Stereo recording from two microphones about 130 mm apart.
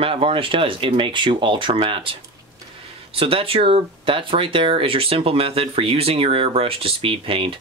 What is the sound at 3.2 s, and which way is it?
Speech, 45° right (ahead or behind).